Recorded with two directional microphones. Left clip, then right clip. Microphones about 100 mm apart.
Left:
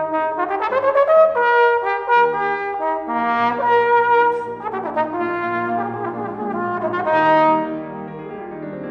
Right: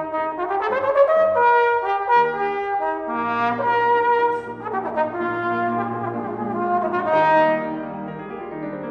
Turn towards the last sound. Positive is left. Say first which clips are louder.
# left 2 dB
turn(degrees=35)  # may be behind; listen again after turning